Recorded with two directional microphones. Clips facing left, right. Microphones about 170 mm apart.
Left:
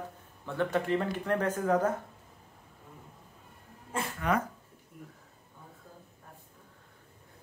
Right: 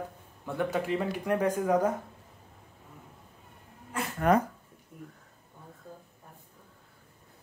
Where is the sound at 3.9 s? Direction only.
25° left (ahead or behind).